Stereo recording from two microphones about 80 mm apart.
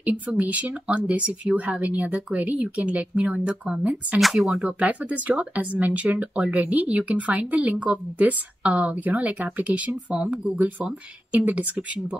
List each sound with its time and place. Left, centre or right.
0.0 s speech: centre
4.2 s speech: centre
4.6 s speech: centre